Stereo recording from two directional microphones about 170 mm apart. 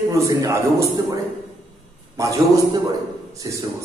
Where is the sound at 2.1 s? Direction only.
20° right (ahead or behind).